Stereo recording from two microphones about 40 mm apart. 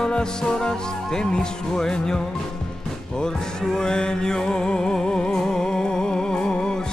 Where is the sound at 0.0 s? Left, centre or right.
Centre.